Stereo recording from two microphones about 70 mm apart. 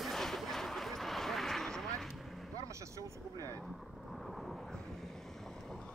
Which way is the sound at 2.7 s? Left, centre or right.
Right.